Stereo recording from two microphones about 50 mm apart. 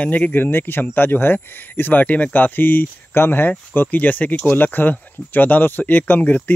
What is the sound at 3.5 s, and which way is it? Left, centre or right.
Speech, left.